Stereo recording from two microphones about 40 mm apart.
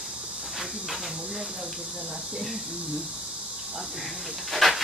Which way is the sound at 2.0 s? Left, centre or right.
Right.